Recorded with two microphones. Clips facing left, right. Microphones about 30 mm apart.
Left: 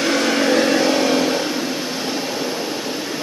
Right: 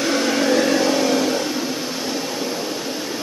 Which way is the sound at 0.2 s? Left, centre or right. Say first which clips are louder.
Left 1 dB; left.